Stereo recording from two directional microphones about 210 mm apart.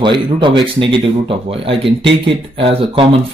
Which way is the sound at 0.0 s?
25° right (ahead or behind).